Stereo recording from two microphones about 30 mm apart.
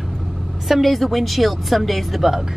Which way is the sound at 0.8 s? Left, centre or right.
Centre.